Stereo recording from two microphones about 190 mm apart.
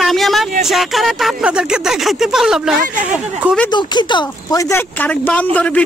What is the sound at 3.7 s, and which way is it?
Speech, 25° left (ahead or behind).